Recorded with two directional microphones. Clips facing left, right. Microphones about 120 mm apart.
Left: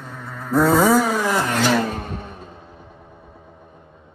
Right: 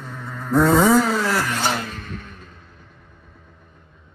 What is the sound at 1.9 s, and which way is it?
Music, 45° left (ahead or behind).